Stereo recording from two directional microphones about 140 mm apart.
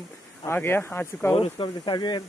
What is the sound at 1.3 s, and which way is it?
Speech, 40° left (ahead or behind).